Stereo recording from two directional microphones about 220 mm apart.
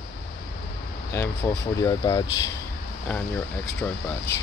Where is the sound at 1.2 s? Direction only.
10° left (ahead or behind).